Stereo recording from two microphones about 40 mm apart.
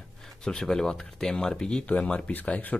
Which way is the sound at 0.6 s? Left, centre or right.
Centre.